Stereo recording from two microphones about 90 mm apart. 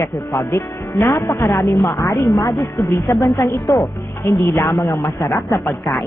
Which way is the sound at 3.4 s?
45° left (ahead or behind).